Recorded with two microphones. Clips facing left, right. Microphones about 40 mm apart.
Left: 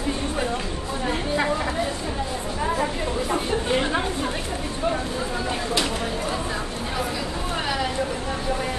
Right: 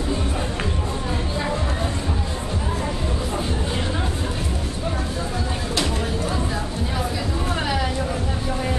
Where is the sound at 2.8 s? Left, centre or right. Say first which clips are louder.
Left 2 dB; left.